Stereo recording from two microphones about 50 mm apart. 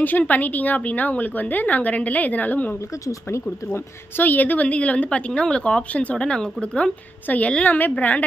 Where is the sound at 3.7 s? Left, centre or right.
Left.